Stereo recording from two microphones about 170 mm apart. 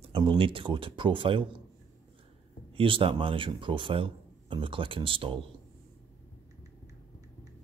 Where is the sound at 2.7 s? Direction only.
30° right (ahead or behind).